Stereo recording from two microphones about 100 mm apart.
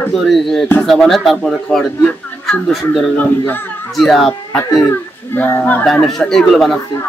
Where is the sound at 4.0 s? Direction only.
Centre (ahead or behind).